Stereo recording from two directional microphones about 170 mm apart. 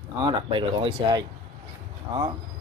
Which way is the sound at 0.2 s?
30° right (ahead or behind).